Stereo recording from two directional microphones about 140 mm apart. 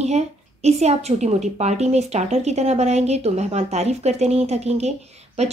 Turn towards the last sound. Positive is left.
turn(degrees=-50)  # may be behind; listen again after turning